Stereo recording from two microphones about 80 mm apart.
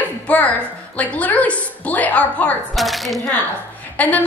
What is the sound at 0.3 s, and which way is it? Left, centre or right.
A woman's voice, centre.